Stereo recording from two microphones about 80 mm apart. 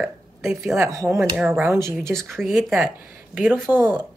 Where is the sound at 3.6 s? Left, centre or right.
Right.